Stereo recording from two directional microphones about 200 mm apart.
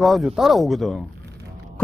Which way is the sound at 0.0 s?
Centre (ahead or behind).